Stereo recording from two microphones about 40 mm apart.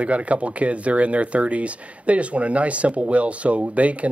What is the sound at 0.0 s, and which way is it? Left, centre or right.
Speech, right.